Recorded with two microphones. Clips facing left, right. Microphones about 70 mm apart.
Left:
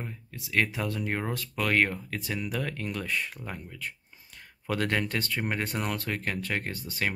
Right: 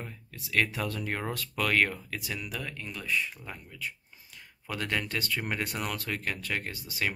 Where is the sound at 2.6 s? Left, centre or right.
Left.